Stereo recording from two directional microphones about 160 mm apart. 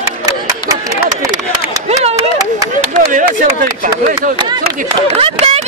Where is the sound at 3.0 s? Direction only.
65° right (ahead or behind).